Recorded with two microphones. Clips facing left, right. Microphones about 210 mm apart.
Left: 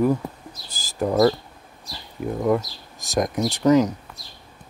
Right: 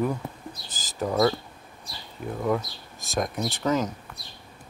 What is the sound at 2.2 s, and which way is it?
Speech, 55° left (ahead or behind).